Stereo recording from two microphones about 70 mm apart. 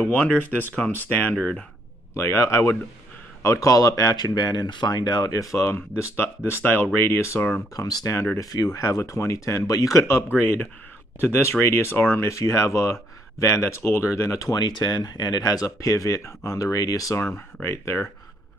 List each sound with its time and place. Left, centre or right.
0.1 s speech: centre
2.1 s speech: left
4.4 s speech: left
5.6 s speech: left
7.7 s speech: left
12.4 s speech: left
14.6 s speech: left
17.6 s speech: left